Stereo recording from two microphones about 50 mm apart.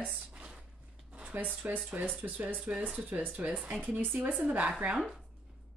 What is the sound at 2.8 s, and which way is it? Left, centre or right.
A woman's voice, right.